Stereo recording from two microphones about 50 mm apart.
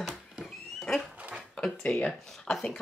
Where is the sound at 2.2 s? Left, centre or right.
Centre.